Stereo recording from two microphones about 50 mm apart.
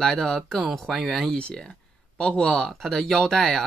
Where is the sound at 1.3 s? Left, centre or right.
Centre.